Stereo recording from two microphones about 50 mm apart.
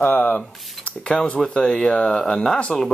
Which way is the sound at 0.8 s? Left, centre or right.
Left.